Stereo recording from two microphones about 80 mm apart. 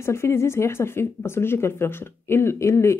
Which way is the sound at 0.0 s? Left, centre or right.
Left.